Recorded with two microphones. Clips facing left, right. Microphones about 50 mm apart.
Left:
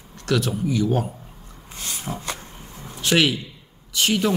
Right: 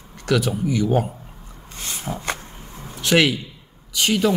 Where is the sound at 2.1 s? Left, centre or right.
Centre.